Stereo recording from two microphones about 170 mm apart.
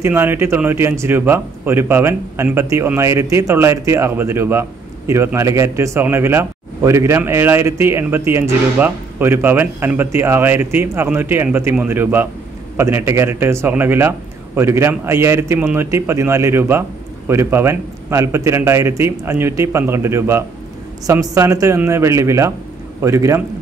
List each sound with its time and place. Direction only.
0.0 s speech: 15° right (ahead or behind)